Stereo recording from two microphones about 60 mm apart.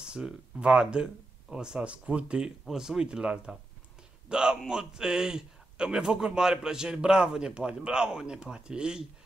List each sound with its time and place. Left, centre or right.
0.0 s a man's voice: centre